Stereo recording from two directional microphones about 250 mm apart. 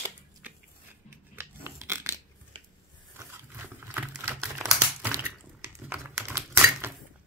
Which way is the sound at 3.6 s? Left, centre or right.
Centre.